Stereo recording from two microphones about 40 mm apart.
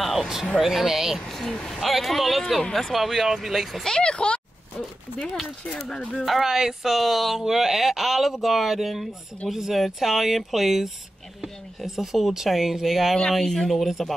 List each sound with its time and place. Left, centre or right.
0.2 s speech: centre
3.8 s speech: left
5.4 s speech: centre
6.2 s speech: centre